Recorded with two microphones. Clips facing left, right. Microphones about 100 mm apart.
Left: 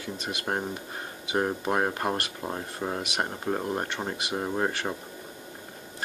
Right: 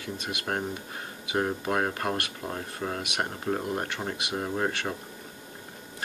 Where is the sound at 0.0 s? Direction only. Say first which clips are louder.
Left 1 dB; 25° left (ahead or behind).